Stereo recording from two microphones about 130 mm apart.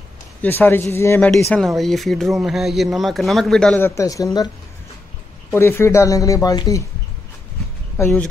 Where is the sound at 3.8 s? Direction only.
25° left (ahead or behind).